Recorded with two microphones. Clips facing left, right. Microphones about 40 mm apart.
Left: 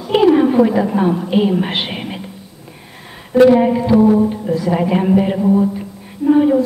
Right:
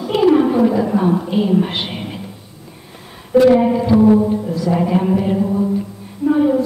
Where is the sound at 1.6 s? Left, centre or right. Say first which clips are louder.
Even; left.